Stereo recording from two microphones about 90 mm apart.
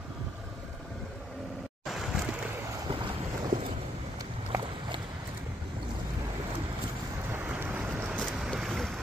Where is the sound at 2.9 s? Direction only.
65° right (ahead or behind).